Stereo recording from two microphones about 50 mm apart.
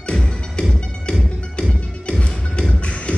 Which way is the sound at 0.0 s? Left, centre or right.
Centre.